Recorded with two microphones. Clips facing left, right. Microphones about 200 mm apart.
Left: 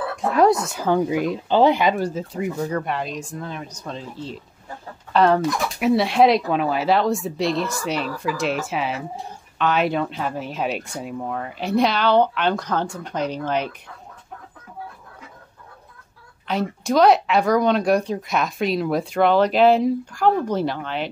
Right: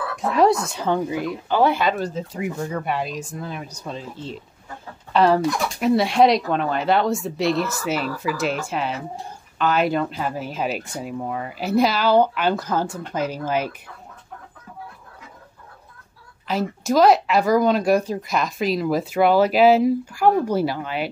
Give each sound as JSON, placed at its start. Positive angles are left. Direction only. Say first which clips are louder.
{"t": 0.4, "sound": "speech", "louder": "left 1 dB", "side_deg": 0}
{"t": 1.1, "sound": "speech", "louder": "left 3 dB", "side_deg": 20}
{"t": 2.3, "sound": "speech", "louder": "left 2 dB", "side_deg": 0}
{"t": 16.4, "sound": "speech", "louder": "even", "side_deg": 0}